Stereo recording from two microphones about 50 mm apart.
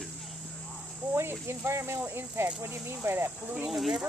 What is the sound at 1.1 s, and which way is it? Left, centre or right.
Speech, right.